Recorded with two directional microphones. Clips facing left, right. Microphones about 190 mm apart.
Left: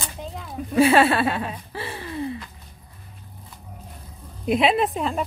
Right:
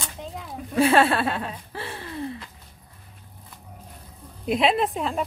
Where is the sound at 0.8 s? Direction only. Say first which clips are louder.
Left 2 dB; 5° left (ahead or behind).